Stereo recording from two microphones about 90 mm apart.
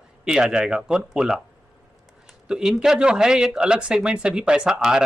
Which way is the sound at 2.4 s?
10° right (ahead or behind).